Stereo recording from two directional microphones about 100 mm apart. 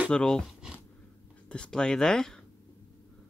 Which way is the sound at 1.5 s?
10° left (ahead or behind).